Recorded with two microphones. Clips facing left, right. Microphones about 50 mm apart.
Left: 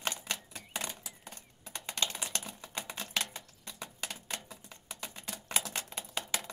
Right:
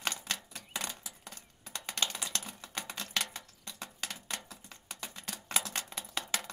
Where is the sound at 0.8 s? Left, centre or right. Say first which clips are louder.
Even; left.